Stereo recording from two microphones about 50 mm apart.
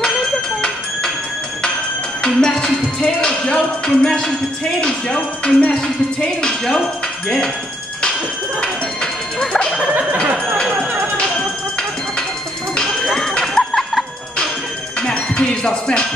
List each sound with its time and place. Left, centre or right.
2.2 s music: centre
8.5 s music: centre
13.0 s music: centre
13.3 s a sound: centre
15.0 s music: centre